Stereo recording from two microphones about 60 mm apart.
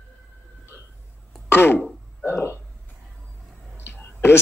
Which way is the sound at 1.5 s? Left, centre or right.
Left.